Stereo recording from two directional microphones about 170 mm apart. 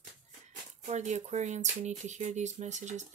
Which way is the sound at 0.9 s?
45° right (ahead or behind).